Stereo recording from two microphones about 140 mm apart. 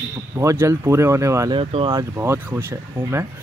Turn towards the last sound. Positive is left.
turn(degrees=-15)  # may be behind; listen again after turning